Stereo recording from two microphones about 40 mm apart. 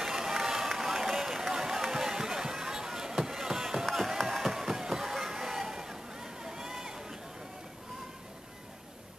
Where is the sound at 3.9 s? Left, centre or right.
Centre.